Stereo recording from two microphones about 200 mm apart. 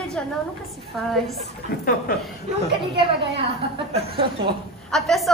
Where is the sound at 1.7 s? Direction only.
50° left (ahead or behind).